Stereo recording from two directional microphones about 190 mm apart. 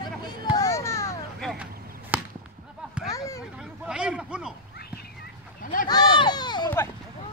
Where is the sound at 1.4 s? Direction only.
5° right (ahead or behind).